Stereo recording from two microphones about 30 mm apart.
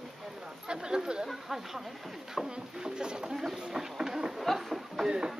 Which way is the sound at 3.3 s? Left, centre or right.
Centre.